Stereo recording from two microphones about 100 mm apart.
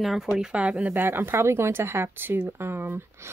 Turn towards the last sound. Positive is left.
turn(degrees=-25)  # may be behind; listen again after turning